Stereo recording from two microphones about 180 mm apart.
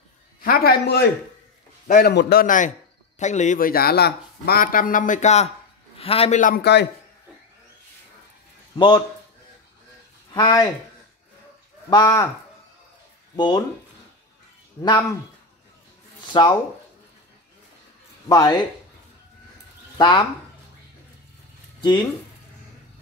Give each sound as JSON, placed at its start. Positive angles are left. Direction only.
{"t": 0.4, "sound": "a man's voice", "side_deg": 55}
{"t": 2.4, "sound": "a man's voice", "side_deg": 45}
{"t": 6.4, "sound": "a man's voice", "side_deg": 60}
{"t": 8.7, "sound": "a man's voice", "side_deg": 25}
{"t": 10.3, "sound": "speech", "side_deg": 20}
{"t": 11.9, "sound": "speech", "side_deg": 20}
{"t": 14.8, "sound": "speech", "side_deg": 25}
{"t": 16.3, "sound": "speech", "side_deg": 25}
{"t": 18.3, "sound": "speech", "side_deg": 20}
{"t": 20.0, "sound": "speech", "side_deg": 25}